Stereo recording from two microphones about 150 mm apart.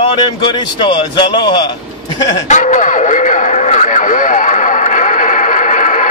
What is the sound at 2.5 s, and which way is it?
Radio, 55° left (ahead or behind).